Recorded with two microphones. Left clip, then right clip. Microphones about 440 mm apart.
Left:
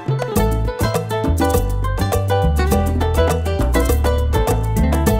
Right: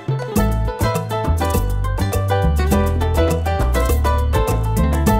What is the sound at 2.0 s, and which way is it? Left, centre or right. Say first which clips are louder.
Music: left 2 dB; left.